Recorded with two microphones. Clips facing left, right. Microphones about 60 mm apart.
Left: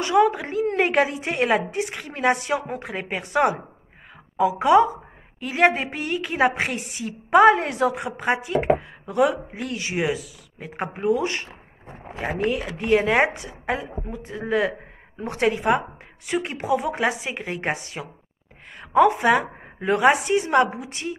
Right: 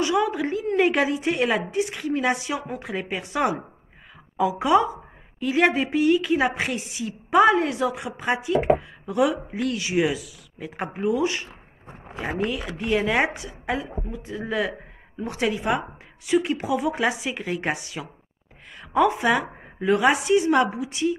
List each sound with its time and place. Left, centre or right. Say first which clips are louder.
0.0 s a woman's voice: left 3 dB; left
12.4 s a woman's voice: left 8 dB; left